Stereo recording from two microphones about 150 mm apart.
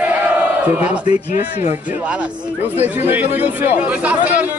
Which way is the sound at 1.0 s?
45° left (ahead or behind).